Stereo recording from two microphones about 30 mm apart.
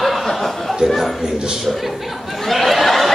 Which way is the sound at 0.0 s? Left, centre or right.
Centre.